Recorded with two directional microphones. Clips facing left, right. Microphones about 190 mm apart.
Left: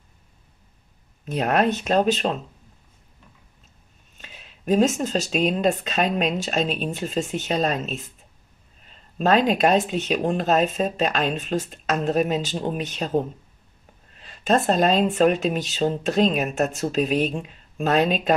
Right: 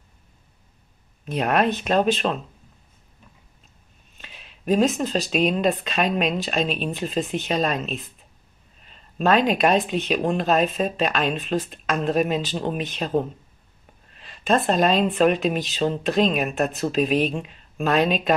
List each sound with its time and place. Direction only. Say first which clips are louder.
1.4 s speech: even; 35° left (ahead or behind)
4.7 s speech: left 1 dB; 45° left (ahead or behind)
5.7 s speech: even; 45° left (ahead or behind)
9.2 s speech: even; 40° left (ahead or behind)
14.2 s speech: even; 40° left (ahead or behind)